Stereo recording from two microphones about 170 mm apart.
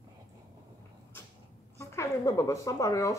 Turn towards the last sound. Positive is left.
turn(degrees=20)  # may be behind; listen again after turning